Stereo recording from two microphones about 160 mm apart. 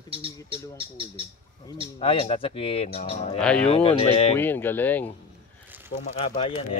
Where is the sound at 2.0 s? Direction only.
40° left (ahead or behind).